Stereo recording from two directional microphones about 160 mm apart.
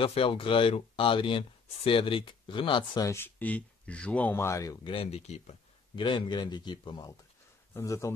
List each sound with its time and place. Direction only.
0.0 s speech: 35° left (ahead or behind)
3.1 s speech: 15° left (ahead or behind)
4.8 s speech: 35° left (ahead or behind)
5.9 s speech: 30° left (ahead or behind)